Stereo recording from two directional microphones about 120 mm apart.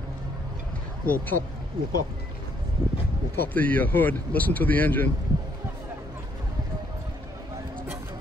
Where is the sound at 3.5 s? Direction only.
15° left (ahead or behind).